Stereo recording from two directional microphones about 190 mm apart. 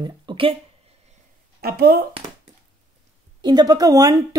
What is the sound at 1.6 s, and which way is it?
Speech, 55° right (ahead or behind).